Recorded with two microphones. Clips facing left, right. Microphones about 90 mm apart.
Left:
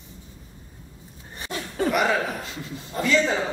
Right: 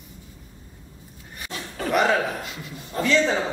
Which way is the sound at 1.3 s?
30° left (ahead or behind).